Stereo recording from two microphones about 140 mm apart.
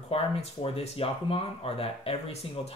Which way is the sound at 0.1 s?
45° left (ahead or behind).